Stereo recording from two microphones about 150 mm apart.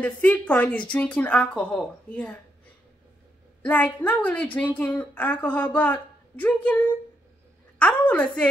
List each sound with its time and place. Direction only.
0.0 s a woman's voice: 10° left (ahead or behind)
3.6 s a woman's voice: 10° left (ahead or behind)
7.8 s a woman's voice: 10° left (ahead or behind)